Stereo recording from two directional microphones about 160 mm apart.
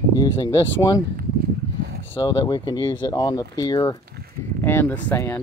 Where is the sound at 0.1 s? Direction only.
25° left (ahead or behind).